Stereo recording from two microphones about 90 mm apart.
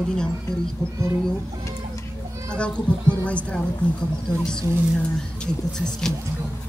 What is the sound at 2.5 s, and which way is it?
Speech, 15° left (ahead or behind).